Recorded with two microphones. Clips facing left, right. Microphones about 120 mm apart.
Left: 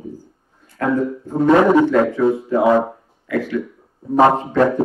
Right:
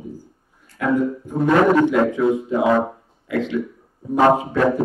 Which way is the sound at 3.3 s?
20° right (ahead or behind).